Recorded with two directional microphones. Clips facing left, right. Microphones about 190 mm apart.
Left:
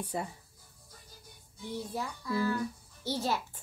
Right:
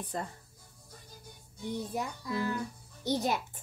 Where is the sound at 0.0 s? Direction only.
10° left (ahead or behind).